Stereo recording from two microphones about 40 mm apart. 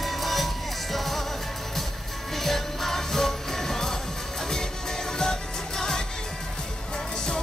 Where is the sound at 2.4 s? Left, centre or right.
Centre.